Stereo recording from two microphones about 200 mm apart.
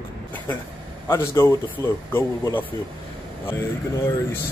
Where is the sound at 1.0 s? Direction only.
15° left (ahead or behind).